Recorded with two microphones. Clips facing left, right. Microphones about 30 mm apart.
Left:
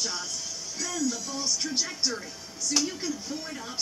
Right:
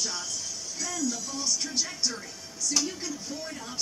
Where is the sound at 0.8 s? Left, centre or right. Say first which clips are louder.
Left 2 dB; centre.